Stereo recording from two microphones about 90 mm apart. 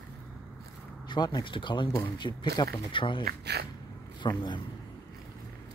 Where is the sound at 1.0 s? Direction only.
55° left (ahead or behind).